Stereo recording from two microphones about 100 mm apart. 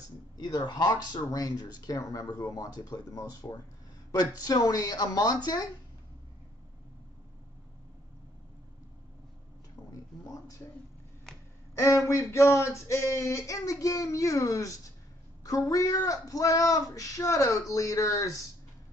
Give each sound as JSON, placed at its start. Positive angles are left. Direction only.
{"t": 0.4, "sound": "speech", "side_deg": 45}
{"t": 11.3, "sound": "a sound", "side_deg": 5}
{"t": 11.7, "sound": "speech", "side_deg": 30}